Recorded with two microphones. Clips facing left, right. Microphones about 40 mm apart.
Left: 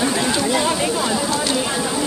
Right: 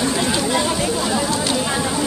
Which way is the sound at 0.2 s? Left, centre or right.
Centre.